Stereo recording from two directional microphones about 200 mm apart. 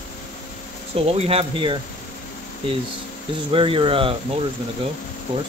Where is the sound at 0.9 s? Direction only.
30° right (ahead or behind).